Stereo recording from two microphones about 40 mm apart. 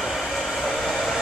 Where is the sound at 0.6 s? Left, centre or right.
Centre.